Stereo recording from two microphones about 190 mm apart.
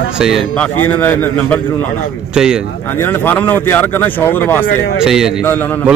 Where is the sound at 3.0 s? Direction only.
10° left (ahead or behind).